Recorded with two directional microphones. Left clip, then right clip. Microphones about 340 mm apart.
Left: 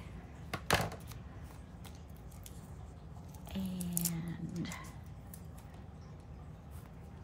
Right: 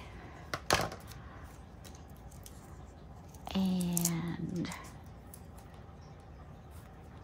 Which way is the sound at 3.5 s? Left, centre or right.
Centre.